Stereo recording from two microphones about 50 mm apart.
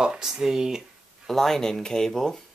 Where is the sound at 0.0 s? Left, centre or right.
Centre.